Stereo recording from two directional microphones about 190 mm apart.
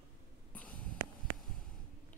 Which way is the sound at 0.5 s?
10° left (ahead or behind).